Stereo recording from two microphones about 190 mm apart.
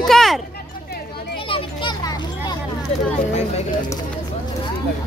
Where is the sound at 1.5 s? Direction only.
25° left (ahead or behind).